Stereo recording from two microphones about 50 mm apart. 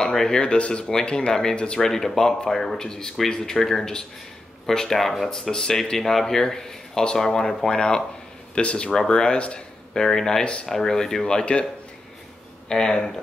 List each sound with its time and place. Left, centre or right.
0.0 s speech: centre
10.7 s speech: centre
12.6 s speech: centre